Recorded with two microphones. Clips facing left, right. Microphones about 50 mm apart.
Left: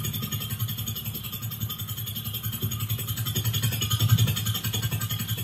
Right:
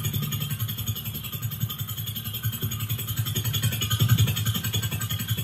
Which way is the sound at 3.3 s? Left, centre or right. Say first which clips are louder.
Even; right.